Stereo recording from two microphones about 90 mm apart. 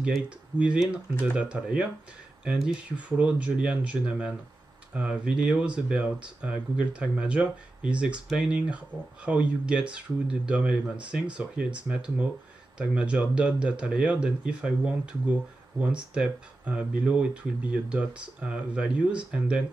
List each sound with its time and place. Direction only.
1.2 s speech: 15° right (ahead or behind)